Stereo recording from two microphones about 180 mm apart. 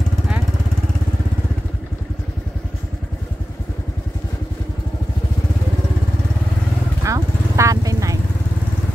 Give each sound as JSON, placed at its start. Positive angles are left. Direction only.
{"t": 7.1, "sound": "vehicle", "side_deg": -15}